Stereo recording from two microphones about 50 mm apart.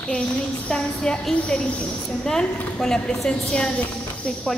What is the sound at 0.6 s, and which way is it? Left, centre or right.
Speech, centre.